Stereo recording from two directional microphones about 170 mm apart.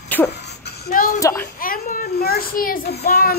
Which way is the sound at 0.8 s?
65° left (ahead or behind).